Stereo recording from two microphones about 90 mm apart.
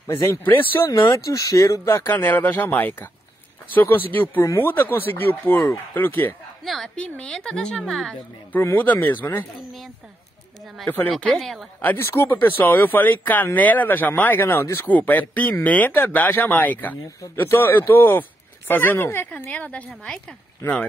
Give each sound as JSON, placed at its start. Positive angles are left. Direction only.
{"t": 0.0, "sound": "speech", "side_deg": 30}
{"t": 1.1, "sound": "speech", "side_deg": 40}
{"t": 6.6, "sound": "a woman's voice", "side_deg": 0}
{"t": 7.0, "sound": "a woman's voice", "side_deg": 10}
{"t": 8.5, "sound": "speech", "side_deg": 25}
{"t": 11.3, "sound": "a woman's voice", "side_deg": 0}
{"t": 11.8, "sound": "speech", "side_deg": 20}
{"t": 20.6, "sound": "speech", "side_deg": 25}